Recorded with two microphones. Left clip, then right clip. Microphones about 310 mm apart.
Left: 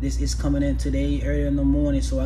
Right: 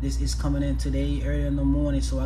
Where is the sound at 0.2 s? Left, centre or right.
Centre.